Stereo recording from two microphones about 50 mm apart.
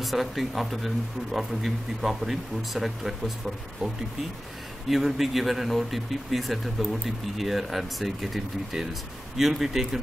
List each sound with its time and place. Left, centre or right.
0.0 s speech: centre